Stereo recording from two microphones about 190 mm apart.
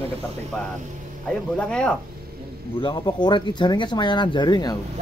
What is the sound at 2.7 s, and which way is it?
A man's voice, 25° left (ahead or behind).